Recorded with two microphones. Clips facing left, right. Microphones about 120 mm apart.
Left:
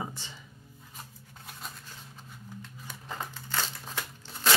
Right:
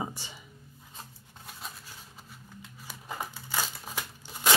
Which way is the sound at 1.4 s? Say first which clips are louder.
Even; centre (ahead or behind).